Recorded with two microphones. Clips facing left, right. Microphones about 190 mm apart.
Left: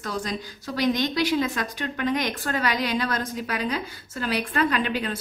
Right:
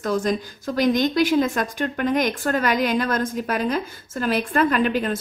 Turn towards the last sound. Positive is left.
turn(degrees=-50)  # may be behind; listen again after turning